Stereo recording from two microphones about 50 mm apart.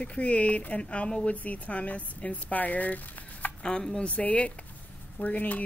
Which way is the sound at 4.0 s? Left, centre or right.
Left.